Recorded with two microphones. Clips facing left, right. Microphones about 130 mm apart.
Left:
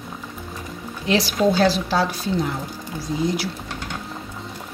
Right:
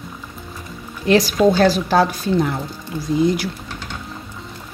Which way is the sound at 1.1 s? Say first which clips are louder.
Right 5 dB; 45° right (ahead or behind).